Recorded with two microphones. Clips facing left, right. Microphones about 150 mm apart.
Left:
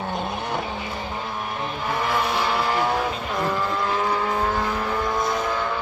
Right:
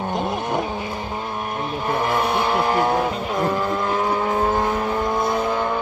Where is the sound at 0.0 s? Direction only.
20° right (ahead or behind).